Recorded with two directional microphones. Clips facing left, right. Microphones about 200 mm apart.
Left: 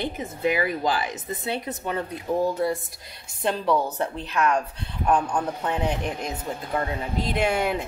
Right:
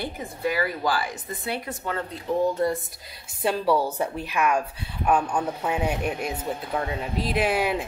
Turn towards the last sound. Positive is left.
turn(degrees=-5)  # may be behind; listen again after turning